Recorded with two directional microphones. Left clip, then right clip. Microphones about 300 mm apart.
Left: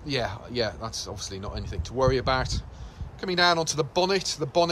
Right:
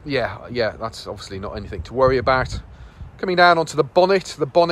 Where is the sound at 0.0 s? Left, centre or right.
Centre.